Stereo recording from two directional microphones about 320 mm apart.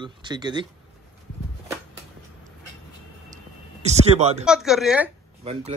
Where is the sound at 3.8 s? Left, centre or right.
Right.